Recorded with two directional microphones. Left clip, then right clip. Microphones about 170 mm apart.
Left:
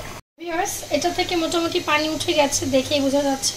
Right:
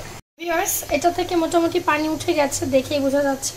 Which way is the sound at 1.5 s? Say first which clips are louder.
Right 3 dB; 15° right (ahead or behind).